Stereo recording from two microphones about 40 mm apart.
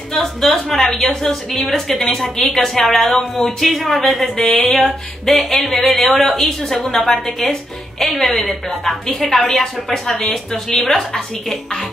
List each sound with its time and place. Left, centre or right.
0.1 s a woman's voice: centre
3.4 s a woman's voice: centre